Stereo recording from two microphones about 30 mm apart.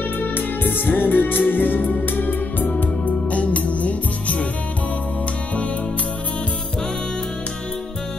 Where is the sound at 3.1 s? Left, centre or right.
Left.